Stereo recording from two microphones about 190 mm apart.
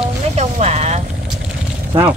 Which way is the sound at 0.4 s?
35° right (ahead or behind).